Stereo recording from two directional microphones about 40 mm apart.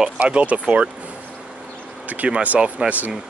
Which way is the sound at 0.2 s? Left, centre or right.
Right.